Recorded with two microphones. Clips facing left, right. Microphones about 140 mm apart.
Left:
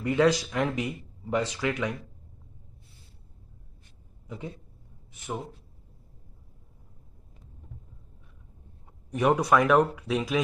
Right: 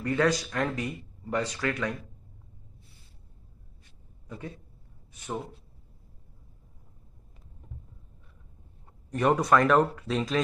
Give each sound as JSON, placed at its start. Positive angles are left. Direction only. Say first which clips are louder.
{"t": 0.0, "sound": "speech", "louder": "left 3 dB", "side_deg": 15}
{"t": 4.3, "sound": "a man's voice", "louder": "left 2 dB", "side_deg": 15}
{"t": 9.1, "sound": "speech", "louder": "even", "side_deg": 5}